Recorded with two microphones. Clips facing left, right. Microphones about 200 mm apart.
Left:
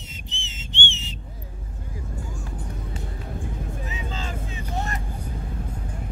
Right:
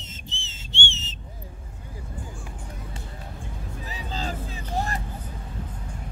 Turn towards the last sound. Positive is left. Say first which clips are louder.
# right 1 dB
turn(degrees=-35)  # may be behind; listen again after turning